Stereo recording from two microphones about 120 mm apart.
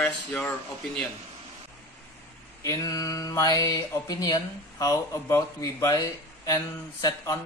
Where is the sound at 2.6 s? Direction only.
25° left (ahead or behind).